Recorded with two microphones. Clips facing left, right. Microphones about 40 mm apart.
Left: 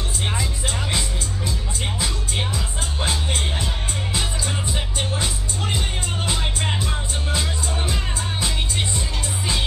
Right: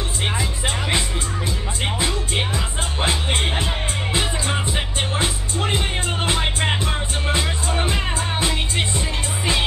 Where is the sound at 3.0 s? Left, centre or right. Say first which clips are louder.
Right 3 dB; right.